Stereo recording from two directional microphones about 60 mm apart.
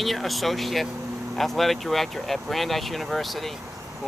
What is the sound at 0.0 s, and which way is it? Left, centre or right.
Speech, centre.